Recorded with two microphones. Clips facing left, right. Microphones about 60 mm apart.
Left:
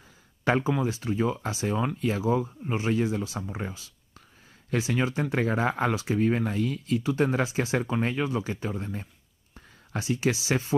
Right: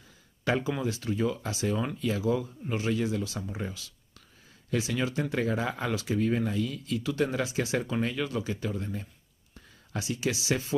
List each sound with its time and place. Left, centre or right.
0.5 s speech: left
7.0 s speech: left